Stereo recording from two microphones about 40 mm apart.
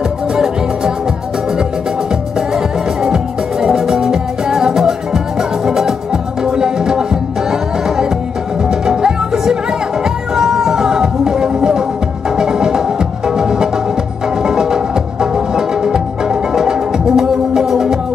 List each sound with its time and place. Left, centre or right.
2.5 s music: centre
8.6 s music: centre